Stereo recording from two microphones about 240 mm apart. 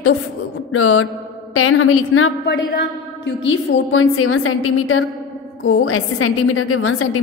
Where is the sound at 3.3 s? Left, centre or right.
Left.